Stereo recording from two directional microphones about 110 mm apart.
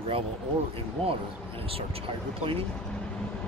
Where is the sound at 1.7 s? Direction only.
60° right (ahead or behind).